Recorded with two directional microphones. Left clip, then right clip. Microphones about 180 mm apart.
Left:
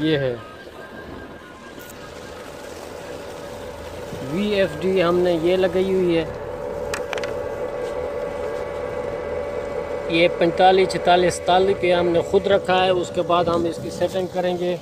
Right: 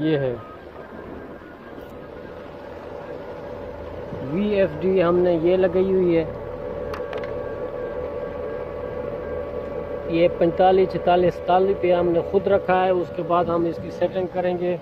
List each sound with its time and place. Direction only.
0.0 s speech: 20° left (ahead or behind)
4.4 s speech: 5° left (ahead or behind)
10.0 s speech: 5° left (ahead or behind)